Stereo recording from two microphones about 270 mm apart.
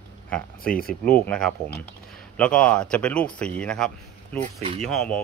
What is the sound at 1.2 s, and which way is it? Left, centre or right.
Speech, centre.